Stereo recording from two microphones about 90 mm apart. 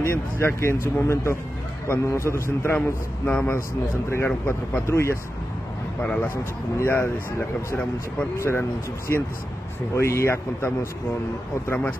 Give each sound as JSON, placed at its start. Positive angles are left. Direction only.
{"t": 0.0, "sound": "a man's voice", "side_deg": 30}
{"t": 4.8, "sound": "a man's voice", "side_deg": 30}
{"t": 5.9, "sound": "speech", "side_deg": 15}
{"t": 8.4, "sound": "speech", "side_deg": 25}